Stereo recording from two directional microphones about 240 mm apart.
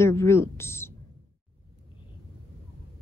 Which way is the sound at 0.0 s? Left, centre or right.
Centre.